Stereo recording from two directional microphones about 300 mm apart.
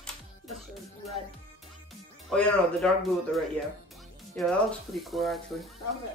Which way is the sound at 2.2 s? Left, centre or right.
Centre.